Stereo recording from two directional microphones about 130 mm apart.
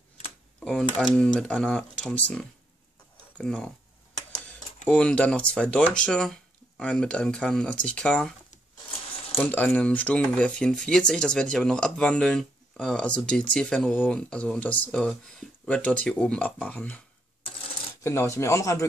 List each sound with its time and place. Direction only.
0.6 s typewriter: 5° left (ahead or behind)
0.9 s speech: 5° left (ahead or behind)
4.8 s speech: 5° left (ahead or behind)
9.4 s speech: 15° left (ahead or behind)
18.0 s speech: 20° left (ahead or behind)